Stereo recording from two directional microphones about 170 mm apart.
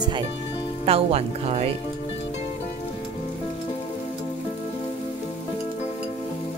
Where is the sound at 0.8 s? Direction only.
35° right (ahead or behind).